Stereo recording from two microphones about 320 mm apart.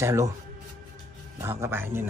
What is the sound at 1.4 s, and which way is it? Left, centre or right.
Speech, centre.